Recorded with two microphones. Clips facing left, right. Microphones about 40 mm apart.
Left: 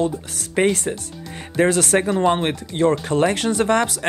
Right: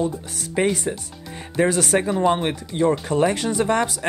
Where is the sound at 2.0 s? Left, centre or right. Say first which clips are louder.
Left 1 dB; centre.